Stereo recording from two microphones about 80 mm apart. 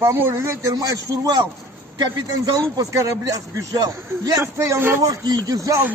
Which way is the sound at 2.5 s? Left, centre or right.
Right.